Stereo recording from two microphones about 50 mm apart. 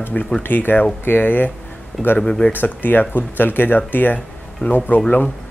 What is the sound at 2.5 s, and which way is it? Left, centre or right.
Speech, left.